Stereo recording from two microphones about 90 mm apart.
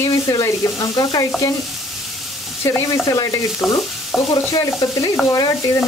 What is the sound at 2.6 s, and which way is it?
Speech, 30° left (ahead or behind).